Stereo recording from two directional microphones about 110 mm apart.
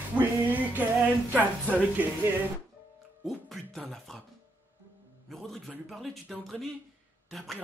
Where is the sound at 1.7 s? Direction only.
15° right (ahead or behind).